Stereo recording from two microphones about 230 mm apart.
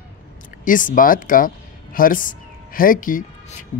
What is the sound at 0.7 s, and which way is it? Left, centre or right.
Speech, left.